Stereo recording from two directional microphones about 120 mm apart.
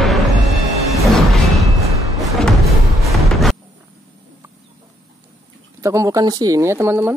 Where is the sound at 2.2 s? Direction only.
Centre (ahead or behind).